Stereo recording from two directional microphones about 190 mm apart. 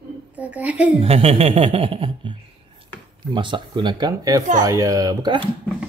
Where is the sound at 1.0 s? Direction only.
30° right (ahead or behind).